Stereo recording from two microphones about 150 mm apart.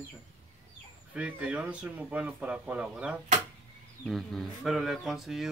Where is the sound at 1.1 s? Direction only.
10° right (ahead or behind).